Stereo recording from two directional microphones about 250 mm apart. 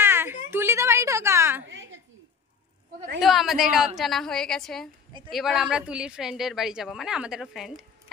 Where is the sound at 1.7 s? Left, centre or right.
Right.